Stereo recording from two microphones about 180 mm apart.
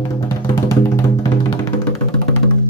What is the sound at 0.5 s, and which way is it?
Music, 15° left (ahead or behind).